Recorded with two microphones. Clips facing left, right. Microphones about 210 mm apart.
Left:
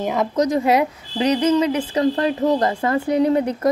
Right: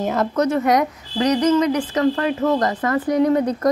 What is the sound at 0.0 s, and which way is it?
Speech, centre (ahead or behind).